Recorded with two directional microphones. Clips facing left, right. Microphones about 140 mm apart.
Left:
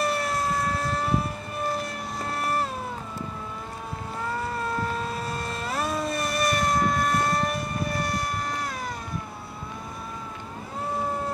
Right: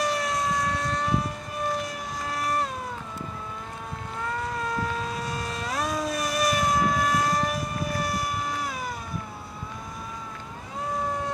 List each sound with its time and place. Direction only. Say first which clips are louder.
0.0 s civil defense siren: even; centre (ahead or behind)
4.2 s motorboat: even; 5° left (ahead or behind)
11.1 s boat: left 1 dB; 5° left (ahead or behind)